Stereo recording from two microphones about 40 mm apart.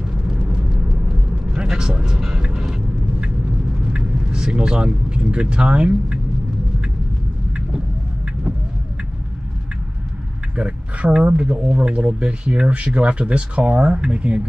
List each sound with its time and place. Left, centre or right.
1.5 s speech: centre
2.4 s vehicle: centre
3.8 s speech: right
10.5 s speech: right